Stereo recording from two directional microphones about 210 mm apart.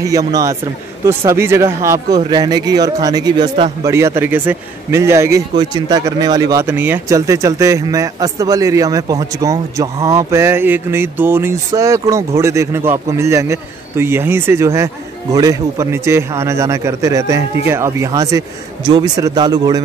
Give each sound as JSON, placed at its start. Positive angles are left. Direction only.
{"t": 0.3, "sound": "a man's voice", "side_deg": -15}